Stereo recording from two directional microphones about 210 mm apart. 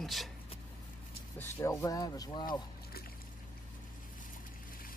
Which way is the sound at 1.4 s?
10° left (ahead or behind).